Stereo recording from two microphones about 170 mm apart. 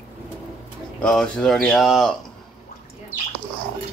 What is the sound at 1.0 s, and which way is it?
Speech, 5° left (ahead or behind).